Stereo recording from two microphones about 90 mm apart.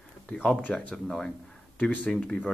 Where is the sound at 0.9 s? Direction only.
5° left (ahead or behind).